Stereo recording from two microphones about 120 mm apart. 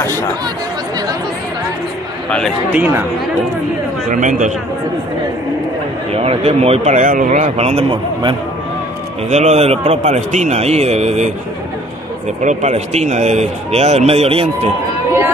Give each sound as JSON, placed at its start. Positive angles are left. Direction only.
{"t": 2.2, "sound": "speech", "side_deg": 10}
{"t": 2.7, "sound": "speech", "side_deg": -15}
{"t": 4.1, "sound": "speech", "side_deg": -90}
{"t": 6.1, "sound": "speech", "side_deg": -55}
{"t": 9.3, "sound": "a man's voice", "side_deg": -65}
{"t": 12.4, "sound": "speech", "side_deg": -70}